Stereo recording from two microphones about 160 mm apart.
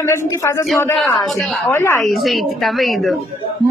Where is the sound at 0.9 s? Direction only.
Centre (ahead or behind).